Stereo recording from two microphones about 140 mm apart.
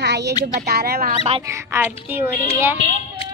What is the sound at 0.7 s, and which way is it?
Speech, 90° right.